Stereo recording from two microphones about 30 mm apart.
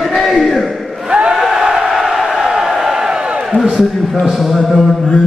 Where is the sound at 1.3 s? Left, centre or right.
Centre.